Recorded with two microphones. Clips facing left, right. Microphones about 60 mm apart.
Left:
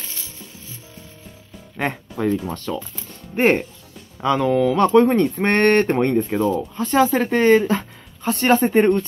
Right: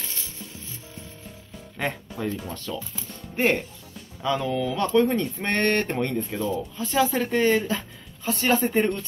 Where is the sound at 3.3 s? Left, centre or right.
Left.